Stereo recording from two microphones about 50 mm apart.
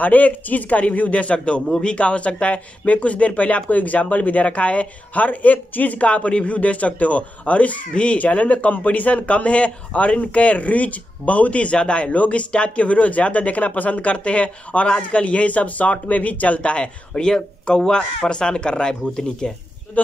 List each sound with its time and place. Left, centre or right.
0.0 s a man's voice: left; by 19.5 s centre